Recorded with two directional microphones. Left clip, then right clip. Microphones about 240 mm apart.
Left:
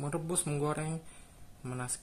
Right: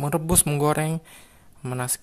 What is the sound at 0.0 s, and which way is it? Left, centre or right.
Speech, right.